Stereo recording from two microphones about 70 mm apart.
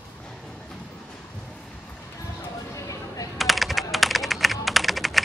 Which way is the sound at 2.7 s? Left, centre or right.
Left.